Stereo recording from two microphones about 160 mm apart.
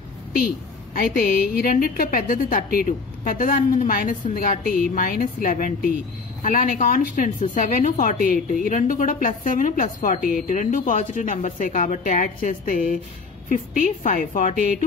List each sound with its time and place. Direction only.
0.9 s a woman's voice: 65° left (ahead or behind)